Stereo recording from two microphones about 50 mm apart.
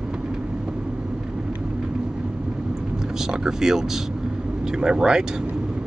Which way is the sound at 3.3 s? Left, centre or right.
Centre.